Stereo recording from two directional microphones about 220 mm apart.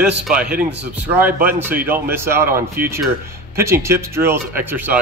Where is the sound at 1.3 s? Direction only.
40° right (ahead or behind).